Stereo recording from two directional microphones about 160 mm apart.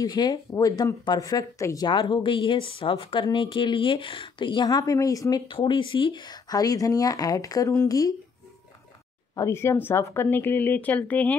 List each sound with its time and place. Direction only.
0.0 s speech: 25° left (ahead or behind)
9.3 s speech: 20° left (ahead or behind)